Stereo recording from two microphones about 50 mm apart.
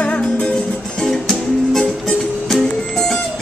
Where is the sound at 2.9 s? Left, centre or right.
Centre.